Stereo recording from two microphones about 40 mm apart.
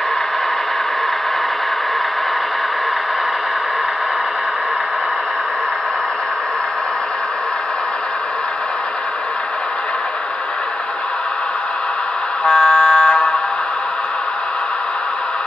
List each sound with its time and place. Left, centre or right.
12.4 s vehicle: left